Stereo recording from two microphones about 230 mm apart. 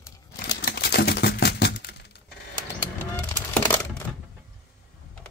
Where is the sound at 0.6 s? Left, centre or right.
Left.